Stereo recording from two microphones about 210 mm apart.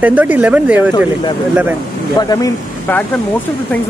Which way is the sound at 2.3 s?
10° left (ahead or behind).